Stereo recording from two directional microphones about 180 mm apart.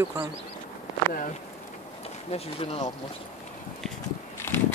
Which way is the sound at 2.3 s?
35° left (ahead or behind).